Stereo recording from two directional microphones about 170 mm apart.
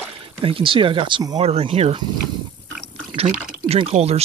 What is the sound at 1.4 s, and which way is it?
Speech, 35° right (ahead or behind).